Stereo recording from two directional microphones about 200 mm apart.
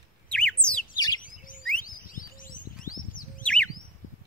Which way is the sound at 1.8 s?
45° left (ahead or behind).